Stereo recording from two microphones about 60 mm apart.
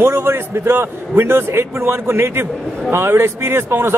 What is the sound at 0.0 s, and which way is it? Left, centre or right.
A man's voice, right.